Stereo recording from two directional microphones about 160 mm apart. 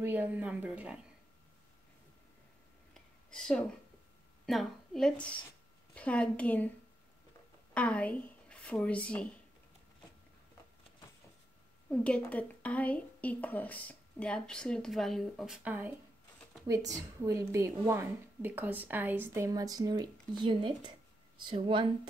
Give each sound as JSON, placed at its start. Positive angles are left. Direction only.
{"t": 0.0, "sound": "speech", "side_deg": -10}
{"t": 3.3, "sound": "a woman's voice", "side_deg": 5}
{"t": 7.7, "sound": "speech", "side_deg": 10}
{"t": 11.9, "sound": "a woman's voice", "side_deg": 5}
{"t": 16.6, "sound": "a woman's voice", "side_deg": -20}